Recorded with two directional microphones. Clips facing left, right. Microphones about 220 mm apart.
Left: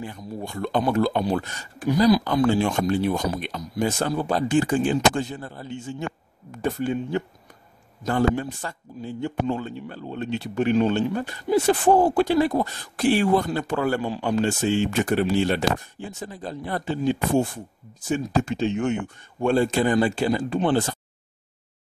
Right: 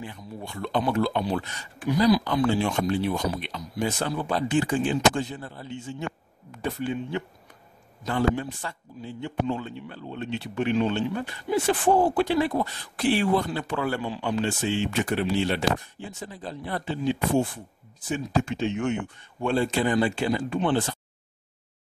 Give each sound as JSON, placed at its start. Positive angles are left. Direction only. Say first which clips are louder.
{"t": 0.0, "sound": "a man's voice", "louder": "left 5 dB", "side_deg": 40}